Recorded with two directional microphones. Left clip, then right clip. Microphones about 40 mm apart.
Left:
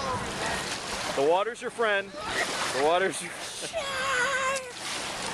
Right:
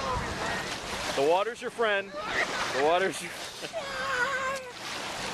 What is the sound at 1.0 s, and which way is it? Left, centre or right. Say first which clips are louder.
Vehicle: left 1 dB; right.